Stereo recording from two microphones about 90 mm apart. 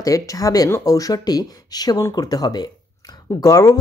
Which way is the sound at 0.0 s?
40° left (ahead or behind).